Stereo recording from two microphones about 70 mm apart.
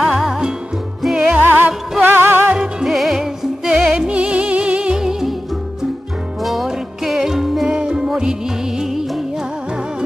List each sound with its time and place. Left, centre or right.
0.0 s music: centre
1.1 s music: centre
1.4 s music: right
2.5 s music: centre
6.4 s music: centre